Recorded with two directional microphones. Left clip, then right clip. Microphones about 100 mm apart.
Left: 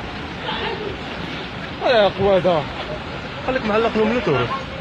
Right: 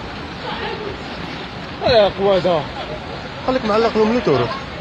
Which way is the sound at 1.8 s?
50° right (ahead or behind).